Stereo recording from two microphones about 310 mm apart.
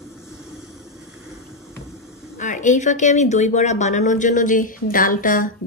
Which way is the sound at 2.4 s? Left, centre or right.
Left.